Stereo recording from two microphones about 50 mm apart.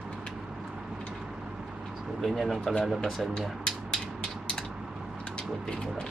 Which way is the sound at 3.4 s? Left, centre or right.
Centre.